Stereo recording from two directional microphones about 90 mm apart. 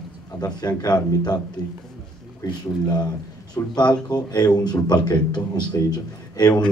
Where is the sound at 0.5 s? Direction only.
50° left (ahead or behind).